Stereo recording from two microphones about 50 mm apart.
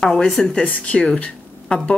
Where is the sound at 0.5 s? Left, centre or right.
Left.